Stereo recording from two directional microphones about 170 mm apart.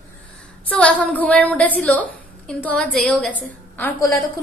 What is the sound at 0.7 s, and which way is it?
A woman's voice, 5° left (ahead or behind).